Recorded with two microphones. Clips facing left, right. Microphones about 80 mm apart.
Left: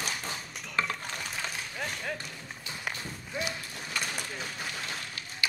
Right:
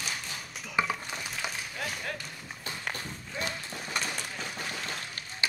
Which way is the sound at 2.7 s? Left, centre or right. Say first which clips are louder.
Right 3 dB; right.